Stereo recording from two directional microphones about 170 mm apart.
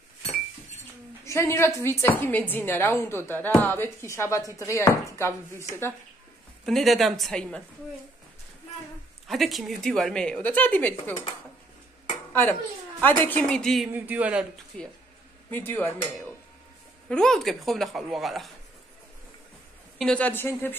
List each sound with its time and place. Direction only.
1.2 s a woman's voice: 15° left (ahead or behind)
6.6 s a woman's voice: centre (ahead or behind)
9.3 s a woman's voice: centre (ahead or behind)
12.3 s a woman's voice: 10° left (ahead or behind)
13.9 s speech: 10° right (ahead or behind)
14.7 s a woman's voice: 5° left (ahead or behind)
17.1 s a woman's voice: 5° left (ahead or behind)
20.0 s a woman's voice: 5° left (ahead or behind)